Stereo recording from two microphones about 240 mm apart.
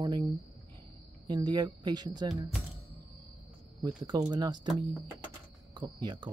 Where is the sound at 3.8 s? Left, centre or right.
Centre.